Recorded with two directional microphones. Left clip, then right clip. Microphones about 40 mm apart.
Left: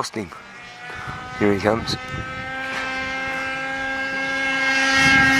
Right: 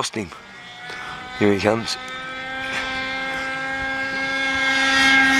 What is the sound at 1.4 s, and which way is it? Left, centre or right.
Speech, right.